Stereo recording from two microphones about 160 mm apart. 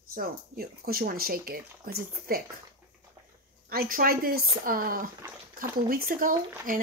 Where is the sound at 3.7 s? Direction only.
65° right (ahead or behind).